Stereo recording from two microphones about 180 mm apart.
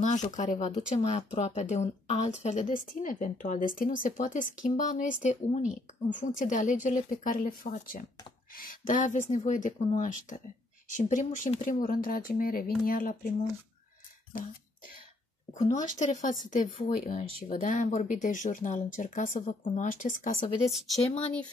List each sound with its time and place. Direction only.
0.0 s speech: 40° left (ahead or behind)
15.5 s speech: 40° left (ahead or behind)
20.6 s speech: centre (ahead or behind)
21.0 s speech: 35° left (ahead or behind)